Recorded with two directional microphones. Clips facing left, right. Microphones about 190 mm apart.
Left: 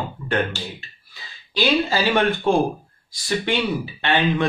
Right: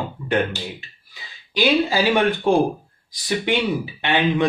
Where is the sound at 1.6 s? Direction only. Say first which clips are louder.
Right 2 dB; 15° right (ahead or behind).